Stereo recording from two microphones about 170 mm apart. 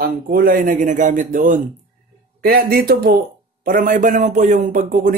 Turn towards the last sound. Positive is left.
turn(degrees=-55)  # may be behind; listen again after turning